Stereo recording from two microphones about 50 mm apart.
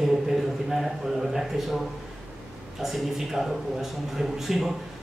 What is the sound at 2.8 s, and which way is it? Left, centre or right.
A man's voice, centre.